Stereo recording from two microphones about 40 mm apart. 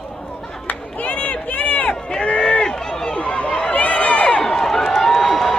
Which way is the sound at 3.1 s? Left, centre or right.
Left.